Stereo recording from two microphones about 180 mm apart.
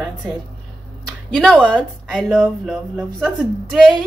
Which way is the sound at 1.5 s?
10° right (ahead or behind).